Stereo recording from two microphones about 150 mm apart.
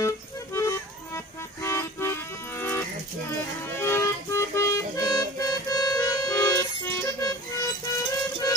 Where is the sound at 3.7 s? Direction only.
15° left (ahead or behind).